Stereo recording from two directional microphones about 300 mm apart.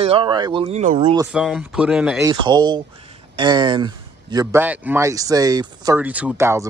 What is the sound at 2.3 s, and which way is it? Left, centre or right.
Speech, centre.